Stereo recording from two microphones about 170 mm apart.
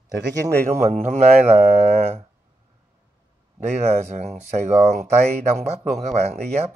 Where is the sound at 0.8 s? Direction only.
40° right (ahead or behind).